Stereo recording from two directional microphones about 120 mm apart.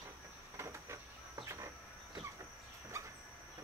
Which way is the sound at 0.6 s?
25° right (ahead or behind).